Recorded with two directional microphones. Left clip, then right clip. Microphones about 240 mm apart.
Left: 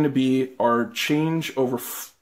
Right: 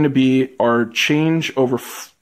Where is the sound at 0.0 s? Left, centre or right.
Right.